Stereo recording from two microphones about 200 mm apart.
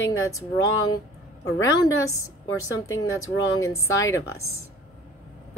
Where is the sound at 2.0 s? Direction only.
15° left (ahead or behind).